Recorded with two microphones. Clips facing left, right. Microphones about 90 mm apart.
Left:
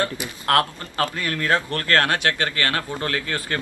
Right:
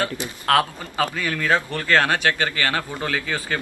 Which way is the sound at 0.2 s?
15° right (ahead or behind).